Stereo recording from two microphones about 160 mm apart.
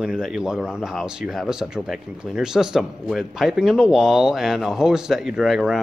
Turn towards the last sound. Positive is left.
turn(degrees=0)  # may be behind; listen again after turning